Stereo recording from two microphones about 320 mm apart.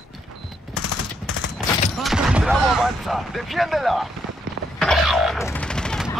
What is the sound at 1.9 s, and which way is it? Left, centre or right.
Speech, centre.